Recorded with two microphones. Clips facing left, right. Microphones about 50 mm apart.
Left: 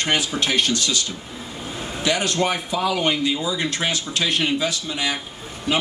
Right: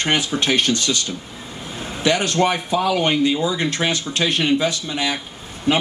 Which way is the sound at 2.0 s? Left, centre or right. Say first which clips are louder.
Right 4 dB; right.